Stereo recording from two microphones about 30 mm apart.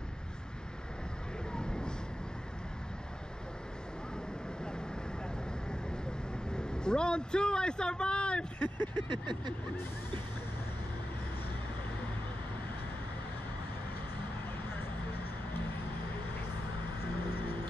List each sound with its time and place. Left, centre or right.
1.5 s a sound: left
6.5 s a man's voice: left
8.6 s vehicle: left